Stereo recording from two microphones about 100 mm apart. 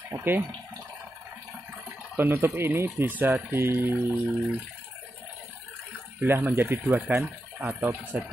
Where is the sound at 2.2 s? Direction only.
20° right (ahead or behind).